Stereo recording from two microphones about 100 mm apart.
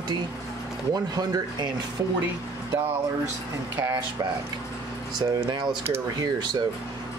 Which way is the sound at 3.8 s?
25° right (ahead or behind).